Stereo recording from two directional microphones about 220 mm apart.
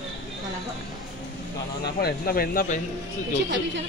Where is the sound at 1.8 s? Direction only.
45° left (ahead or behind).